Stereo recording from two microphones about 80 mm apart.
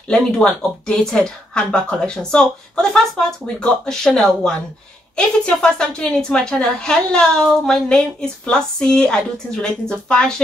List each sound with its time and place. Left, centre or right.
0.1 s speech: centre